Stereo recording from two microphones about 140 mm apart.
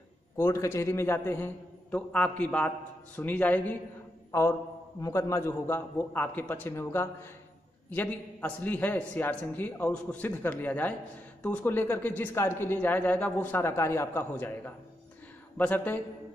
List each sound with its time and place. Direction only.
0.4 s speech: 20° left (ahead or behind)
4.3 s mantra: 20° left (ahead or behind)
5.0 s speech: 20° left (ahead or behind)